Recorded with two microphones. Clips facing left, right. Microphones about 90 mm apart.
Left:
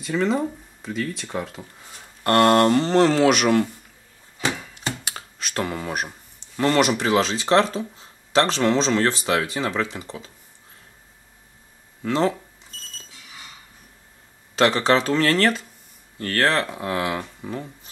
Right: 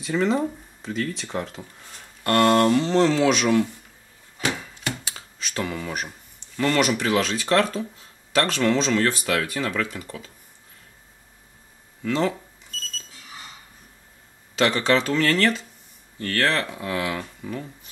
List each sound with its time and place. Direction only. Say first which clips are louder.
0.0 s speech: even; centre (ahead or behind)
2.2 s speech: left 2 dB; 45° left (ahead or behind)
5.0 s a sound: left 2 dB; 55° left (ahead or behind)
5.8 s speech: left 3 dB; 40° left (ahead or behind); by 10.3 s 25° left (ahead or behind)
12.0 s speech: left 2 dB; 35° left (ahead or behind)
14.5 s speech: left 2 dB; 35° left (ahead or behind)